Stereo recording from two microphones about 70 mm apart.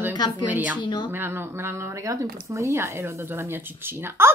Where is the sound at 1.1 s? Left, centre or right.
Right.